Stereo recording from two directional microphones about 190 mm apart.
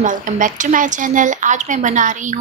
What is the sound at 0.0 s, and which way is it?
A woman's voice, 45° right (ahead or behind).